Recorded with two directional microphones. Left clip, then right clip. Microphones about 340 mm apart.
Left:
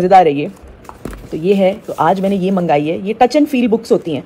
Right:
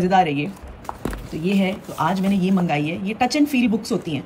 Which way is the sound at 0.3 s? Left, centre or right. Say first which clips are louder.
Left 8 dB; centre.